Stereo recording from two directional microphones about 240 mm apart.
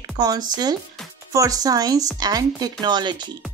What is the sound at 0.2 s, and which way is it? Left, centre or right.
A child's voice, centre.